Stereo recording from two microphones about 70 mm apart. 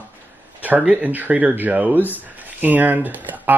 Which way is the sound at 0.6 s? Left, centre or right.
Right.